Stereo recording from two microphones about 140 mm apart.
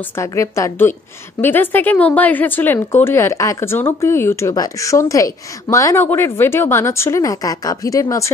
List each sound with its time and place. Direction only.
0.1 s a woman's voice: 20° left (ahead or behind)